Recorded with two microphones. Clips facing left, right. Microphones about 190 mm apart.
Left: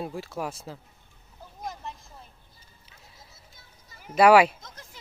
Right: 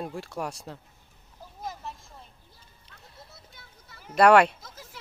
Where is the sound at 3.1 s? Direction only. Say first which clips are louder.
Right 4 dB; 65° right (ahead or behind).